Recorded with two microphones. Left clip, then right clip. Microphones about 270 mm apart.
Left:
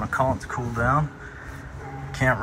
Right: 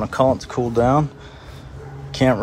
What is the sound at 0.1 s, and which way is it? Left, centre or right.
Speech, centre.